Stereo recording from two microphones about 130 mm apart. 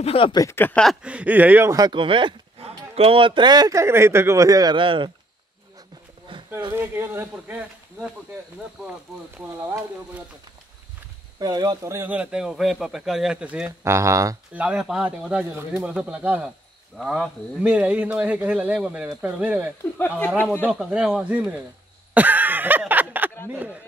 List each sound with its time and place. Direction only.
0.0 s speech: 50° left (ahead or behind)
0.3 s speech: 25° left (ahead or behind)
0.6 s speech: 15° left (ahead or behind)
1.0 s speech: 10° right (ahead or behind)
1.9 s speech: 40° right (ahead or behind)
4.7 s speech: 40° right (ahead or behind)
6.3 s a sound: 40° right (ahead or behind)
6.7 s speech: 20° right (ahead or behind)
11.3 s speech: 30° right (ahead or behind); by 13.7 s 5° right (ahead or behind)
13.7 s speech: 20° right (ahead or behind)
14.5 s speech: 10° right (ahead or behind)
20.7 s speech: 5° right (ahead or behind)
22.1 s a sound: 15° right (ahead or behind)
23.5 s speech: 10° right (ahead or behind)